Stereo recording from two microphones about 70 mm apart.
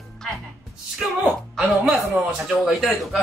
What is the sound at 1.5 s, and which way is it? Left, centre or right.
Speech, centre.